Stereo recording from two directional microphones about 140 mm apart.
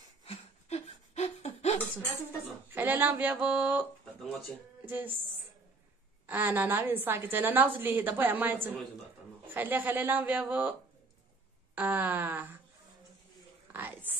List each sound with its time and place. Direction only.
0.2 s a sound: 45° left (ahead or behind)
2.7 s a woman's voice: 15° right (ahead or behind)
4.2 s speech: centre (ahead or behind)
4.8 s speech: 15° right (ahead or behind)
6.2 s a woman's voice: 15° right (ahead or behind)
11.7 s a woman's voice: 15° right (ahead or behind)
13.7 s a sound: 15° right (ahead or behind)